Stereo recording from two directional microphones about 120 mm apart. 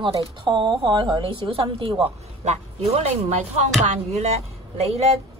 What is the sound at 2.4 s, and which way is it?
Speech, 65° right (ahead or behind).